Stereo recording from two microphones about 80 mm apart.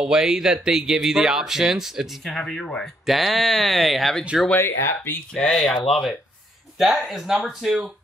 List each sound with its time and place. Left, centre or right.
0.0 s speech: centre
3.1 s speech: centre
4.6 s speech: left
5.3 s speech: centre